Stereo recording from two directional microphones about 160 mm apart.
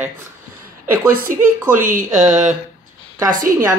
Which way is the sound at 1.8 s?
55° right (ahead or behind).